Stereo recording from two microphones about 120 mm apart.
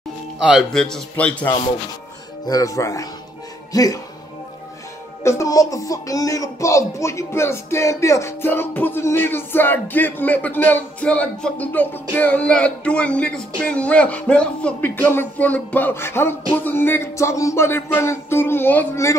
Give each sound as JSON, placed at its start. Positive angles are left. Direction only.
{"t": 0.4, "sound": "speech", "side_deg": -10}
{"t": 0.7, "sound": "speech", "side_deg": 5}
{"t": 2.4, "sound": "speech", "side_deg": 30}
{"t": 5.2, "sound": "speech", "side_deg": 25}